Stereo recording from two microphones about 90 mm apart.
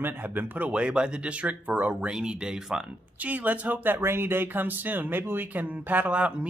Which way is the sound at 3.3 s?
20° right (ahead or behind).